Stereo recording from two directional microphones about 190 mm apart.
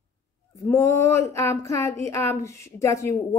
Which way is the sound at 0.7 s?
15° left (ahead or behind).